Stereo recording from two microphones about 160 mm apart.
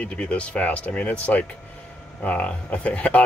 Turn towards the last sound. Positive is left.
turn(degrees=10)  # may be behind; listen again after turning